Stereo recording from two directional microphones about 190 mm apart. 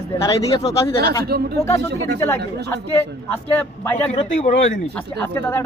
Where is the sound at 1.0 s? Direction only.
55° right (ahead or behind).